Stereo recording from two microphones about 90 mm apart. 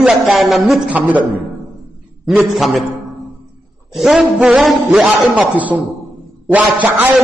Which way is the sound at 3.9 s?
5° right (ahead or behind).